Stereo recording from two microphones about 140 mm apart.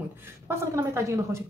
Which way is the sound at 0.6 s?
20° right (ahead or behind).